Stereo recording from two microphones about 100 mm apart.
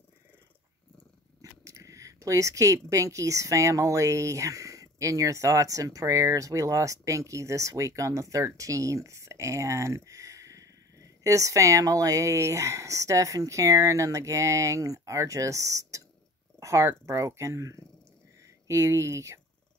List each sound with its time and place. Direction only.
1.4 s speech: 30° right (ahead or behind)